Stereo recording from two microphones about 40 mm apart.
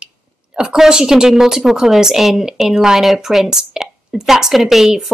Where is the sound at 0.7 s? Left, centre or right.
Centre.